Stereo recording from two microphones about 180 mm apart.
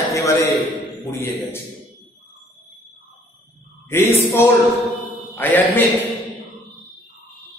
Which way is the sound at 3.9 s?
15° left (ahead or behind).